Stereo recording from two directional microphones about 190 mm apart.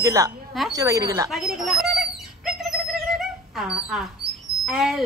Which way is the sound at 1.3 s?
Centre (ahead or behind).